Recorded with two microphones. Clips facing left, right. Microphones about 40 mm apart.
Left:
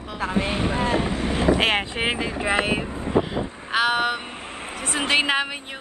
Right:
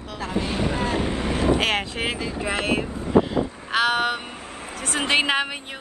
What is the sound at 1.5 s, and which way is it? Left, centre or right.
Speech, left.